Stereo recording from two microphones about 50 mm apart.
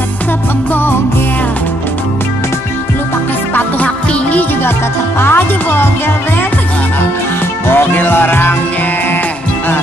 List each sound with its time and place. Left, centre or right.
3.8 s music: left
5.2 s speech: left
7.7 s speech: left